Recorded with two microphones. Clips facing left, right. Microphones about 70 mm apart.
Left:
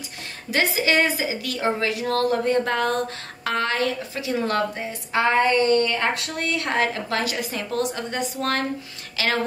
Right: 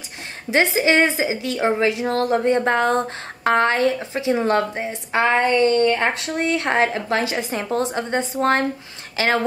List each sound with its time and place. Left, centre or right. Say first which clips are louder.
0.5 s a woman's voice: right 4 dB; right